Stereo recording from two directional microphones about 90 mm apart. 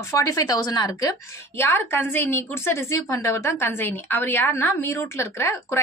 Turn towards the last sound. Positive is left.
turn(degrees=35)  # may be behind; listen again after turning